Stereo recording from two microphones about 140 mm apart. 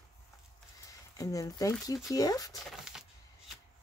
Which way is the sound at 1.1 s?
25° left (ahead or behind).